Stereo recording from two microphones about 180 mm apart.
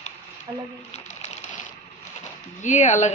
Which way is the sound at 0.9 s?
40° left (ahead or behind).